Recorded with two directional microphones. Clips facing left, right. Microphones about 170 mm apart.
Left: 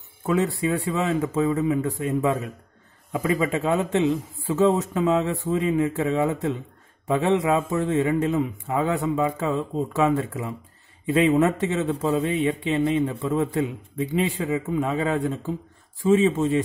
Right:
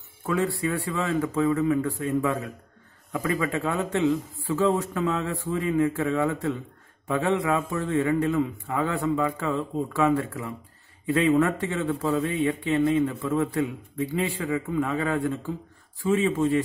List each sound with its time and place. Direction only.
0.3 s a man's voice: 20° left (ahead or behind)